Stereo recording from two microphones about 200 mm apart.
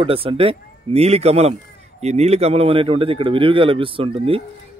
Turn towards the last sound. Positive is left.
turn(degrees=-30)  # may be behind; listen again after turning